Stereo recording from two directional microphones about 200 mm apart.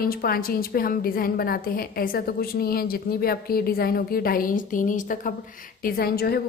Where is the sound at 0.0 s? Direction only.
50° left (ahead or behind).